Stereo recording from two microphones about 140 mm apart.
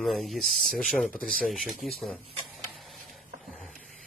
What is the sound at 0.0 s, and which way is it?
Music, centre (ahead or behind).